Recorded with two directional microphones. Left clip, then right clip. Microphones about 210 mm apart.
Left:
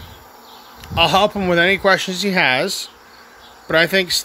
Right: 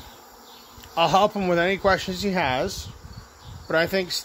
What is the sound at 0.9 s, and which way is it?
Speech, 5° left (ahead or behind).